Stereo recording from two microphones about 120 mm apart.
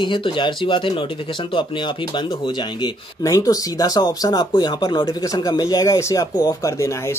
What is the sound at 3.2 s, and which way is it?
Speech, 30° left (ahead or behind).